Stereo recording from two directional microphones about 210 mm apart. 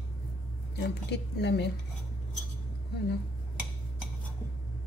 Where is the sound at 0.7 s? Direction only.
55° left (ahead or behind).